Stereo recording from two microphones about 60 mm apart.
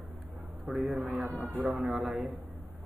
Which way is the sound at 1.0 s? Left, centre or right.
Right.